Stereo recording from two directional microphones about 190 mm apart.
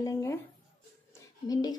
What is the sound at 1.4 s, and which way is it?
Speech, 20° left (ahead or behind).